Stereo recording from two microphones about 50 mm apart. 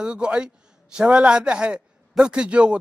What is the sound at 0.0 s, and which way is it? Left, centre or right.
A man's voice, centre.